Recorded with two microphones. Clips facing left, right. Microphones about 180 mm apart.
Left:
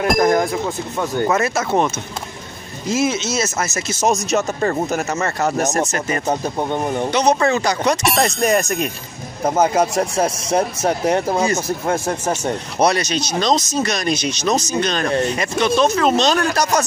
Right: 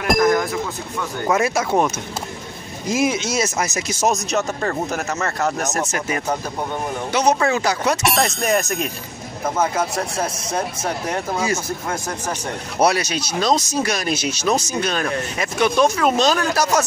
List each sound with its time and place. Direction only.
0.2 s music: 25° left (ahead or behind)
1.3 s speech: 10° right (ahead or behind)
2.9 s speech: 15° right (ahead or behind)
4.1 s speech: centre (ahead or behind)
9.4 s speech: 30° left (ahead or behind)
12.7 s speech: 10° right (ahead or behind)